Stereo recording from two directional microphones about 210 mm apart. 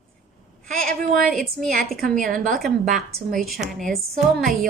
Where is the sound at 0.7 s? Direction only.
5° left (ahead or behind).